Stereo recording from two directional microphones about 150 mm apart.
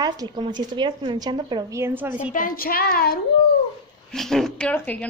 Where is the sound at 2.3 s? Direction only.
70° left (ahead or behind).